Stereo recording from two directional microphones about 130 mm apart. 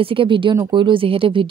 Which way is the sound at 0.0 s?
45° right (ahead or behind).